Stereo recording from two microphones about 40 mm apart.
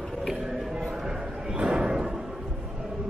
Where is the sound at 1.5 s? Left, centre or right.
Right.